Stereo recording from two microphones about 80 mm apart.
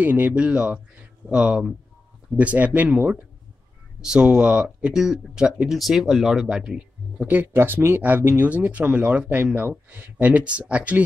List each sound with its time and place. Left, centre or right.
0.0 s speech: right
7.4 s speech: right